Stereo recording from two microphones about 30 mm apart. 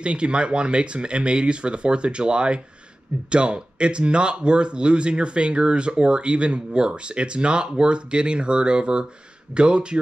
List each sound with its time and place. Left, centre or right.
0.0 s speech: right